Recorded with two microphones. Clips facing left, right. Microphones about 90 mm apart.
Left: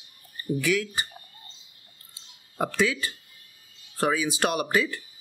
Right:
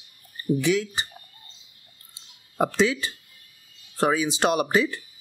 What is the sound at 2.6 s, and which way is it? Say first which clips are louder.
Speech: right 3 dB; 25° right (ahead or behind).